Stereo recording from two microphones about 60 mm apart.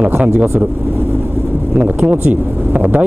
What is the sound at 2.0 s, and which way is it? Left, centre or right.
Speech, right.